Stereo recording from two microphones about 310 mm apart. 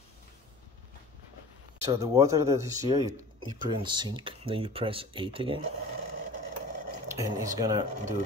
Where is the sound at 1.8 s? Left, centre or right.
Centre.